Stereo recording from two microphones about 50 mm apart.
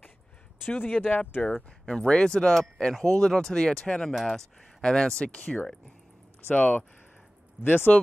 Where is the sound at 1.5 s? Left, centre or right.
Centre.